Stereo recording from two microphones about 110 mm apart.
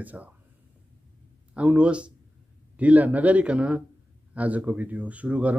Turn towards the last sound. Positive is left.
turn(degrees=-10)  # may be behind; listen again after turning